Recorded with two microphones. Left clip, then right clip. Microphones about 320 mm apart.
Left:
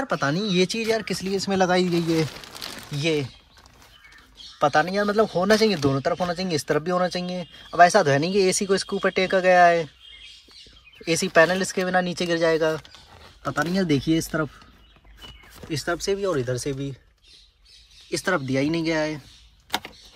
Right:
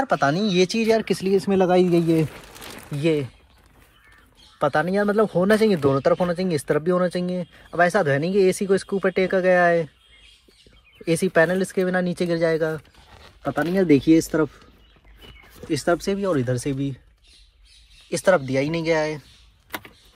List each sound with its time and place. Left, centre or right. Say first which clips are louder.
0.0 s speech: right 4 dB; centre
4.6 s speech: even; centre
11.1 s speech: left 1 dB; centre
13.5 s speech: right 3 dB; right
13.9 s speech: right 8 dB; centre
15.7 s speech: right 3 dB; centre
18.1 s speech: right 5 dB; centre